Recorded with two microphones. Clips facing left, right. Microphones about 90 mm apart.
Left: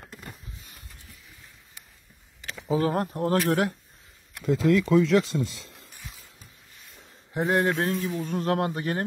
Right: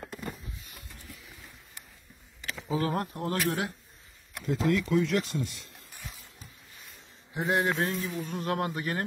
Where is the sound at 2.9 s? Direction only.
40° left (ahead or behind).